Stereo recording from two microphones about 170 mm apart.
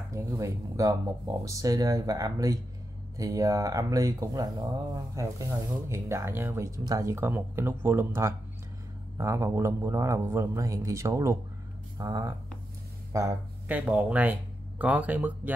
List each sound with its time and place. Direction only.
0.1 s speech: 20° right (ahead or behind)